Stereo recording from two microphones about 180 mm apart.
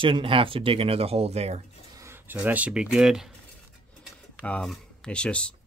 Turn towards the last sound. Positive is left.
turn(degrees=5)  # may be behind; listen again after turning